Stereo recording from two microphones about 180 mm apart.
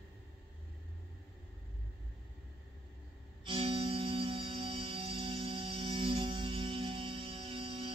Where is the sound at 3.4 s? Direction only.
30° right (ahead or behind).